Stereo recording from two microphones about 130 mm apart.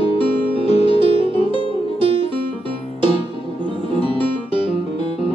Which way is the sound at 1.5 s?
45° right (ahead or behind).